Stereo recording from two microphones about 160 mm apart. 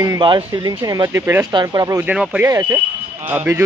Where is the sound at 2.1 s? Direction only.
10° right (ahead or behind).